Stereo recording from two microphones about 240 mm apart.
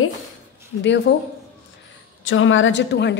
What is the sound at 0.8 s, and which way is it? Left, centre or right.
Speech, left.